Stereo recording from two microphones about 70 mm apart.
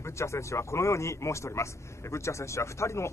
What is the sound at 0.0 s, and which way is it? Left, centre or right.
Speech, left.